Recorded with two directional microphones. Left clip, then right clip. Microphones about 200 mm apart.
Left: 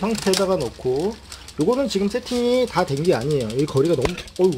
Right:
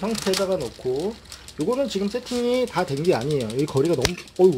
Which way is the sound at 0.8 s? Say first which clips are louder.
Left 3 dB; 5° left (ahead or behind).